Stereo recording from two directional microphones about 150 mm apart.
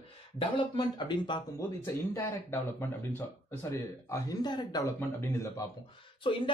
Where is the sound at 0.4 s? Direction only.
30° left (ahead or behind).